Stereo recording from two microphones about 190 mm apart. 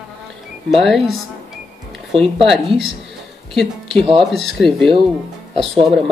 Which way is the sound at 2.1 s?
30° right (ahead or behind).